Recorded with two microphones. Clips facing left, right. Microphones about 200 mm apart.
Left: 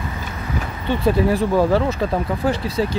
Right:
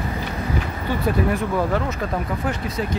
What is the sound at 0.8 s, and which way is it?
Speech, 30° left (ahead or behind).